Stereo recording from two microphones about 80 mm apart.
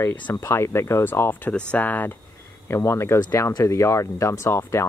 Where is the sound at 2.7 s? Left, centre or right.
Left.